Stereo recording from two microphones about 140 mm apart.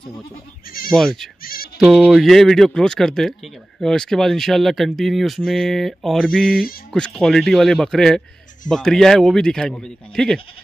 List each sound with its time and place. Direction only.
0.9 s speech: centre (ahead or behind)
1.4 s music: 90° left
1.8 s speech: centre (ahead or behind)